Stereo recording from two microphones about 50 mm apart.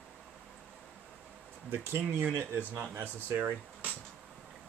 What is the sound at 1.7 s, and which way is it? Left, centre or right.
Speech, right.